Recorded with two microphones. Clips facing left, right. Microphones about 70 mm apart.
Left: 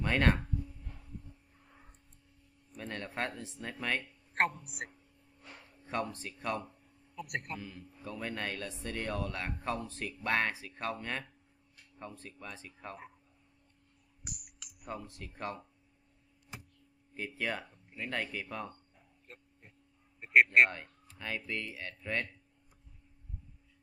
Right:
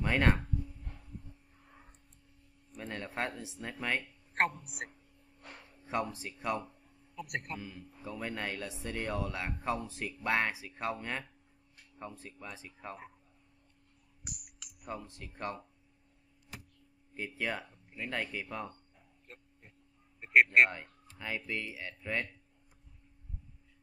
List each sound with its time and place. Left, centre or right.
0.0 s speech: centre
2.7 s speech: centre
5.4 s a sound: right
5.9 s a man's voice: centre
14.2 s a sound: centre
17.1 s a man's voice: centre